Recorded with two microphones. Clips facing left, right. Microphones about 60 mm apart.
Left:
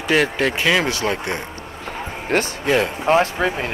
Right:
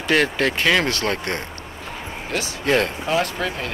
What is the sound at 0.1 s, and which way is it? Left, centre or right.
Speech, centre.